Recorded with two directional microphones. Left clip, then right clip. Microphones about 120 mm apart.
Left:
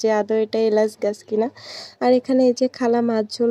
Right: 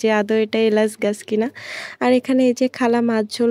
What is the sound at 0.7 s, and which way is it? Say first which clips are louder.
A woman's voice: right 1 dB; 50° right (ahead or behind).